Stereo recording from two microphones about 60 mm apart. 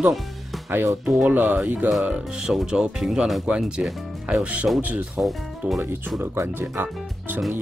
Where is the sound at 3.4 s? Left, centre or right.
Centre.